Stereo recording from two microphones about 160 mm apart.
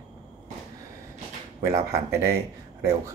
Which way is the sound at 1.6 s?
20° right (ahead or behind).